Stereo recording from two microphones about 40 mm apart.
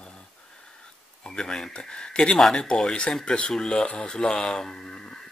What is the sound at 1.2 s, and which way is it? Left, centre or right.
Speech, left.